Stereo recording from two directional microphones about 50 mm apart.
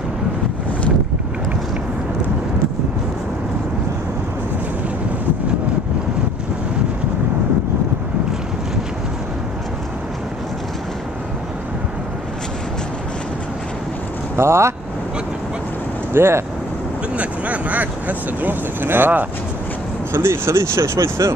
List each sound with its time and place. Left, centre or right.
14.3 s vehicle: right
16.1 s speech: right
17.2 s vehicle: right
20.1 s speech: right